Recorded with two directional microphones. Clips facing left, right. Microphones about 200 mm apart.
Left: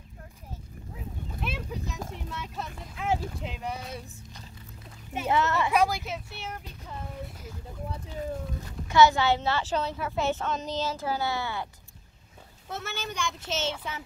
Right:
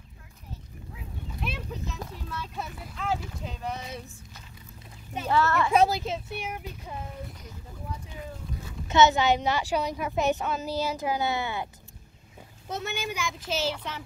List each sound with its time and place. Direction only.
1.4 s a sound: 5° left (ahead or behind)
2.1 s speech: 25° left (ahead or behind)
2.5 s a child's voice: 5° right (ahead or behind)
3.0 s speech: 20° left (ahead or behind)
3.7 s speech: 10° left (ahead or behind)
5.2 s speech: 20° left (ahead or behind)
5.7 s a woman's voice: 25° right (ahead or behind)
6.3 s a woman's voice: 10° right (ahead or behind)
8.8 s a woman's voice: 20° right (ahead or behind)
12.6 s a woman's voice: 20° right (ahead or behind); by 14.0 s centre (ahead or behind)